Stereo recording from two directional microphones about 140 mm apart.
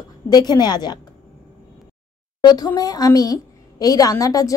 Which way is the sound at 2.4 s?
30° left (ahead or behind).